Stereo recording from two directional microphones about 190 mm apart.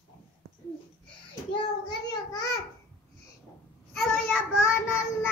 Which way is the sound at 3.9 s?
5° left (ahead or behind).